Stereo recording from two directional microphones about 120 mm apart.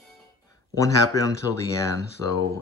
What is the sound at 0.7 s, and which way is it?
Speech, 30° left (ahead or behind).